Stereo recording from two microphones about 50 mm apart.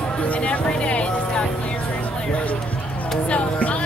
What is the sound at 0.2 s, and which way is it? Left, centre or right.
Music, left.